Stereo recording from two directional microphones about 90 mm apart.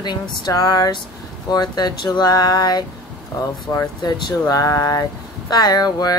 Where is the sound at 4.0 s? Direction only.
45° left (ahead or behind).